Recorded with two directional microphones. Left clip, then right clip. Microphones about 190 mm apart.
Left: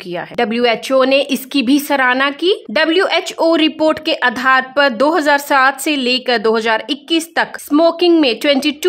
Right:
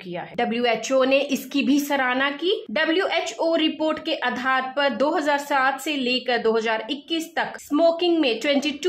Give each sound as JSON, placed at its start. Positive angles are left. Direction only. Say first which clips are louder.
{"t": 0.1, "sound": "a woman's voice", "louder": "left 8 dB", "side_deg": 55}